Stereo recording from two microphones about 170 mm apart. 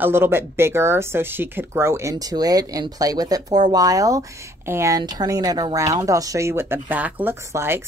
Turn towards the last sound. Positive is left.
turn(degrees=-15)  # may be behind; listen again after turning